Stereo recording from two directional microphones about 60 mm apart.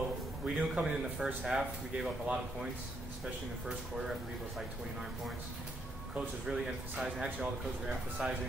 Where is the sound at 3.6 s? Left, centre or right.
Centre.